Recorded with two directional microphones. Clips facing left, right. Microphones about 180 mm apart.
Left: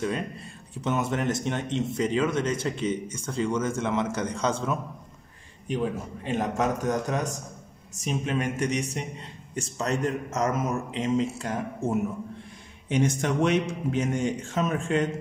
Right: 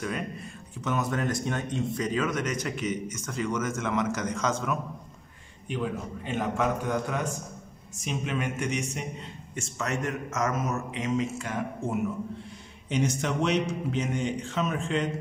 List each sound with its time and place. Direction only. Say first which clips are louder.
0.7 s speech: left 2 dB; 25° left (ahead or behind)
6.2 s a man's voice: left 2 dB; 40° left (ahead or behind)
12.9 s a man's voice: left 3 dB; 50° left (ahead or behind)